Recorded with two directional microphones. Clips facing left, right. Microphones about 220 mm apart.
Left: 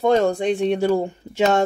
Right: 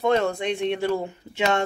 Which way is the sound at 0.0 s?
35° left (ahead or behind).